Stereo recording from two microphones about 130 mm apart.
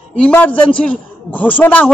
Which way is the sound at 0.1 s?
10° left (ahead or behind).